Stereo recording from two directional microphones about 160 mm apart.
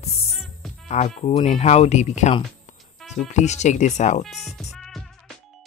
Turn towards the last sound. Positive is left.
turn(degrees=0)  # may be behind; listen again after turning